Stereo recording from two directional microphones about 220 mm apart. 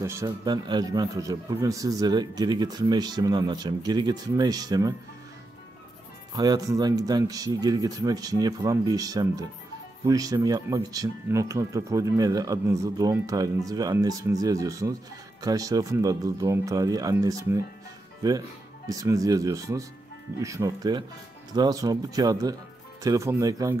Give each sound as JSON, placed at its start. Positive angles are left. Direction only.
{"t": 0.0, "sound": "a man's voice", "side_deg": -15}
{"t": 6.3, "sound": "a man's voice", "side_deg": -20}